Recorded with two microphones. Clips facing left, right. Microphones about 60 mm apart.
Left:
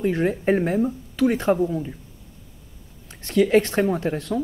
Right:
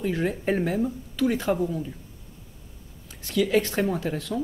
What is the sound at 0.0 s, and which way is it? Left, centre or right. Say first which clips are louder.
Speech: left 5 dB; left.